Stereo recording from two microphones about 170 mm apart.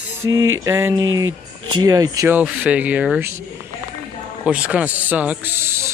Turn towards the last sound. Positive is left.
turn(degrees=-15)  # may be behind; listen again after turning